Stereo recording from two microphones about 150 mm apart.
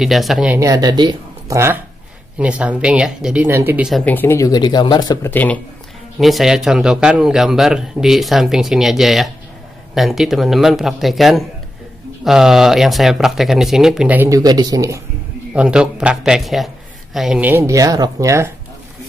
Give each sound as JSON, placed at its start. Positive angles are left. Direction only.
{"t": 0.0, "sound": "a man's voice", "side_deg": 0}
{"t": 0.6, "sound": "speech", "side_deg": -25}
{"t": 2.3, "sound": "a man's voice", "side_deg": -10}
{"t": 4.0, "sound": "speech", "side_deg": 10}
{"t": 5.3, "sound": "speech", "side_deg": 10}
{"t": 6.1, "sound": "a man's voice", "side_deg": 0}
{"t": 14.3, "sound": "speech", "side_deg": -25}
{"t": 15.5, "sound": "a man's voice", "side_deg": -5}